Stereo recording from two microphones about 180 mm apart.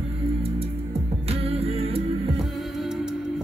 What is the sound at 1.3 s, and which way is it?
Music, 35° right (ahead or behind).